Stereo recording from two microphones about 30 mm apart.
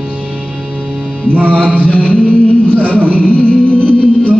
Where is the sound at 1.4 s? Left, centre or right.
Right.